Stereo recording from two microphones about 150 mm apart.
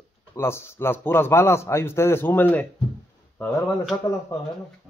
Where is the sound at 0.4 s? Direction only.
15° left (ahead or behind).